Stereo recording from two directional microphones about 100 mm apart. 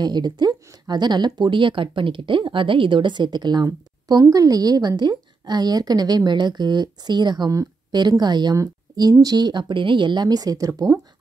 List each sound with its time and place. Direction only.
0.0 s speech: 45° right (ahead or behind)